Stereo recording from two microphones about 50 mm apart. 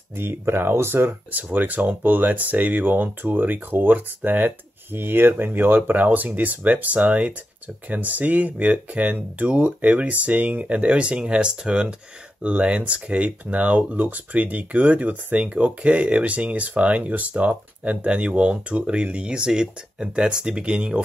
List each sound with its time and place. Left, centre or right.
0.1 s speech: right
1.3 s speech: right; by 21.0 s centre